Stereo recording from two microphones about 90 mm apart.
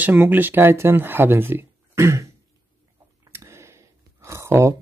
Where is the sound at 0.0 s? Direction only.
20° right (ahead or behind).